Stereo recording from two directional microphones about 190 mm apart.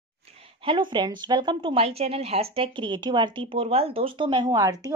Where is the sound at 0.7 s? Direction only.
25° right (ahead or behind).